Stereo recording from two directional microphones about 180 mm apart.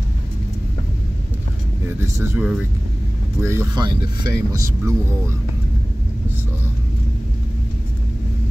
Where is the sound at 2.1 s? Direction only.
15° right (ahead or behind).